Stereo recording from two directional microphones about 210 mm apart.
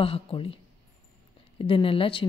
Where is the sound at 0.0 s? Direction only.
25° left (ahead or behind).